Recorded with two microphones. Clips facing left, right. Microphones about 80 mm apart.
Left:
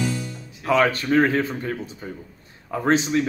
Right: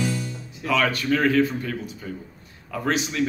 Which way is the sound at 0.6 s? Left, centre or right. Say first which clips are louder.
Left 3 dB; left.